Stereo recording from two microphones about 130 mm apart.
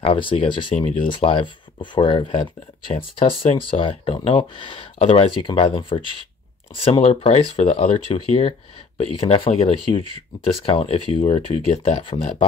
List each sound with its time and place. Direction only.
0.0 s speech: 45° left (ahead or behind)